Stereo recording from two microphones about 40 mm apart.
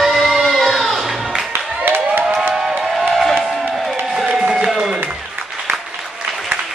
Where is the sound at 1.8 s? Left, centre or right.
Right.